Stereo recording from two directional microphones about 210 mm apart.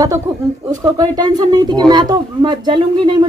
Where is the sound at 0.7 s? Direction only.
20° right (ahead or behind).